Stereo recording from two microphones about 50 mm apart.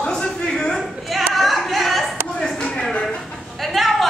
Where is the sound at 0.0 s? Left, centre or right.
Centre.